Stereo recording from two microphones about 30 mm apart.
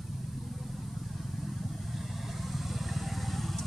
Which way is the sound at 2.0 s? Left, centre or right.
Centre.